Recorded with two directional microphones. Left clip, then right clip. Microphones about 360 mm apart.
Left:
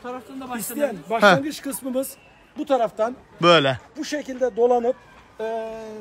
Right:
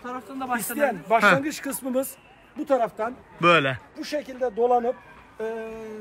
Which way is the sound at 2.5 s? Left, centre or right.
Centre.